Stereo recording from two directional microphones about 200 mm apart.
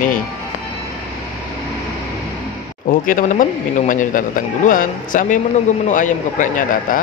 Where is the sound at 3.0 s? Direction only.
40° left (ahead or behind).